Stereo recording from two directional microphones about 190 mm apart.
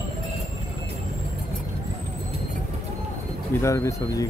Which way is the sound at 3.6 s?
15° left (ahead or behind).